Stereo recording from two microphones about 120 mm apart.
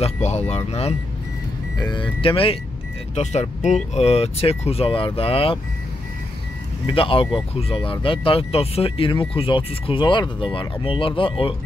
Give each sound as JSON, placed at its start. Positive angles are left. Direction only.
{"t": 0.0, "sound": "speech", "side_deg": 65}
{"t": 1.8, "sound": "speech", "side_deg": 40}
{"t": 3.2, "sound": "speech", "side_deg": 75}
{"t": 6.9, "sound": "speech", "side_deg": 45}